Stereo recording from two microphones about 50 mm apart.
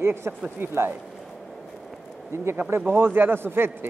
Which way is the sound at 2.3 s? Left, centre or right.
Right.